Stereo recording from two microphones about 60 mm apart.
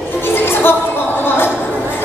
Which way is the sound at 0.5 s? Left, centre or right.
Left.